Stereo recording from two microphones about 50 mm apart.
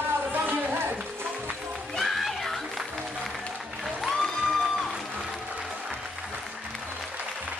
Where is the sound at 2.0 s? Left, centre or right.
Centre.